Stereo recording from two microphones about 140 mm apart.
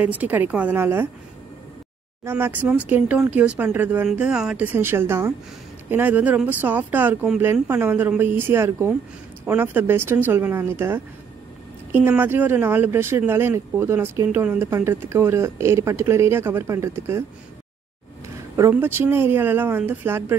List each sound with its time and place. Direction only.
0.0 s speech: 10° right (ahead or behind)
2.2 s speech: 15° right (ahead or behind)
18.6 s speech: 15° right (ahead or behind)